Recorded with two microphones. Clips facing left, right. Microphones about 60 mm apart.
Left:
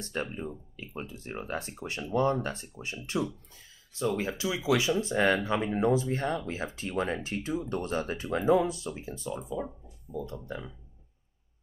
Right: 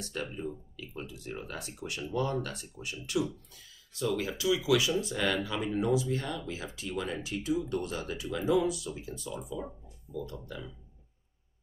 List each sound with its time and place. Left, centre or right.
0.0 s speech: left